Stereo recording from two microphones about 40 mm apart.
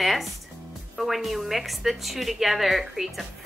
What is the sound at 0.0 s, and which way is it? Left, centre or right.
Music, centre.